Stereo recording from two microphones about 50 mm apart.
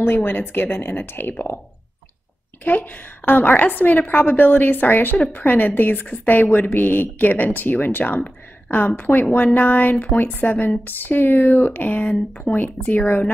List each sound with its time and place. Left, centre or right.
0.0 s speech: left
2.6 s a woman's voice: left